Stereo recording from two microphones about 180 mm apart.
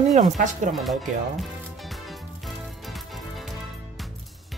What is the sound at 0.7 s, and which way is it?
Music, centre (ahead or behind).